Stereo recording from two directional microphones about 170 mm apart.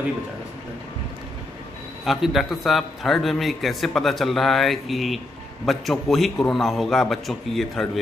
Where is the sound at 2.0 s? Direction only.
Centre (ahead or behind).